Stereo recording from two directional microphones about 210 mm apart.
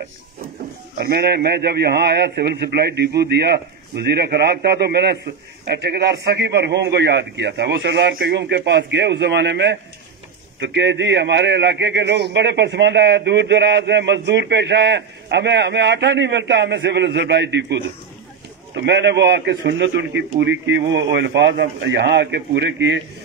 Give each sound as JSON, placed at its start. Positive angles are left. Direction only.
{"t": 0.9, "sound": "a man's voice", "side_deg": -50}
{"t": 18.8, "sound": "a man's voice", "side_deg": -55}